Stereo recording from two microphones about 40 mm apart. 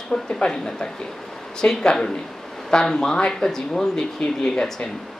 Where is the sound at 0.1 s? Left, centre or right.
Centre.